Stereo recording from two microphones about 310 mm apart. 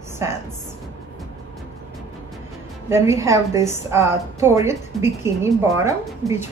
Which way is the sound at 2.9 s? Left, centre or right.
Centre.